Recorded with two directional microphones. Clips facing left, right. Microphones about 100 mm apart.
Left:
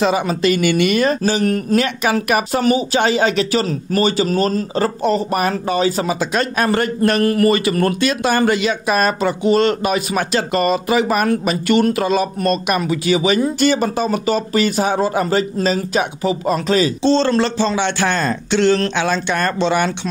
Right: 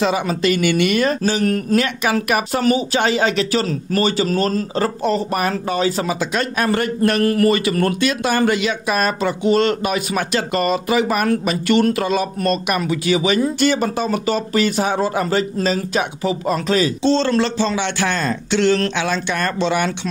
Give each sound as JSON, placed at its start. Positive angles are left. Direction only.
{"t": 0.0, "sound": "speech", "side_deg": 25}
{"t": 6.1, "sound": "speech", "side_deg": 35}